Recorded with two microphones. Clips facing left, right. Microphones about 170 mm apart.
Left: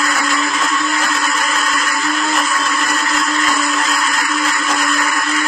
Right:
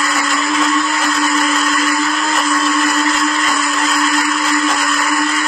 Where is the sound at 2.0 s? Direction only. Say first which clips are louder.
Right 1 dB; centre (ahead or behind).